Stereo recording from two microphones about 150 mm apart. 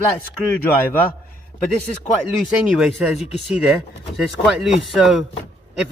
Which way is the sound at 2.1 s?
55° left (ahead or behind).